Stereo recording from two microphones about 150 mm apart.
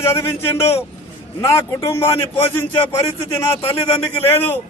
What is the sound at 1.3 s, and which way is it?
A man's voice, 20° left (ahead or behind).